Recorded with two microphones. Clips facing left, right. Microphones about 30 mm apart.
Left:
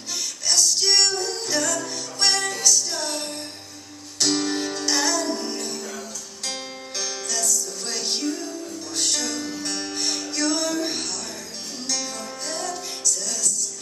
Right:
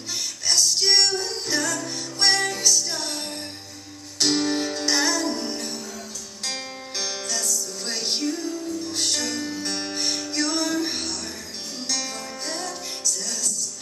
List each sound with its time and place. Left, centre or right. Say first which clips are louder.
0.5 s music: even; centre